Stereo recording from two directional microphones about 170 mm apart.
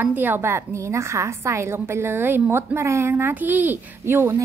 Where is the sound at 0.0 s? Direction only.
10° right (ahead or behind).